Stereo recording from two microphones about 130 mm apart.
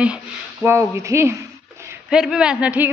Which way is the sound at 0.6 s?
20° right (ahead or behind).